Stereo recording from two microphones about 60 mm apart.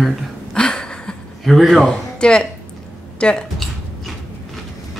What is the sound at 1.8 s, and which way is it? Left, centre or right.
Speech, centre.